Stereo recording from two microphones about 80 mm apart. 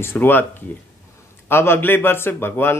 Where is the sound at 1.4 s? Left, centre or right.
Left.